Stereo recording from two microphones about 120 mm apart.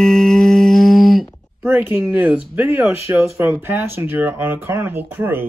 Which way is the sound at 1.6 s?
15° right (ahead or behind).